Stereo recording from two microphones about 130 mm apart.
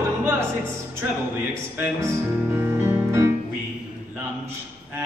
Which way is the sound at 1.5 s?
20° right (ahead or behind).